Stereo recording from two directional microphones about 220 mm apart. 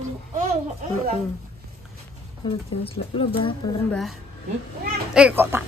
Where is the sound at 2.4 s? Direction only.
25° left (ahead or behind).